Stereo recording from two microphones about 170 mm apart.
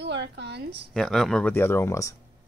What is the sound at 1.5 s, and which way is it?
Speech, 15° left (ahead or behind).